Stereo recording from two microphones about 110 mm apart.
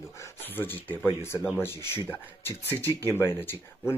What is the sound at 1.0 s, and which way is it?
Speech, 20° left (ahead or behind).